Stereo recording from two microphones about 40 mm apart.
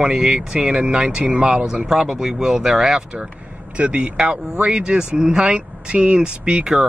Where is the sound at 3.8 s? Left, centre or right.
Right.